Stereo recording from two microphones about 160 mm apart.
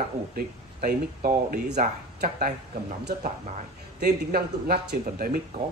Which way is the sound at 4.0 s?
75° right (ahead or behind).